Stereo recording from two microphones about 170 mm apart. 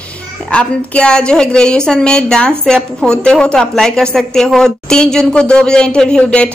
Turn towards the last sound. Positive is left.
turn(degrees=5)  # may be behind; listen again after turning